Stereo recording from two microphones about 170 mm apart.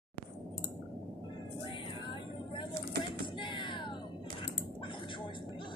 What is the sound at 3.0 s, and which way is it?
Music, 30° left (ahead or behind).